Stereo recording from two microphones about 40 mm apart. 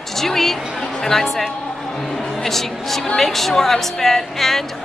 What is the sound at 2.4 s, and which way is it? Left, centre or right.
A woman's voice, centre.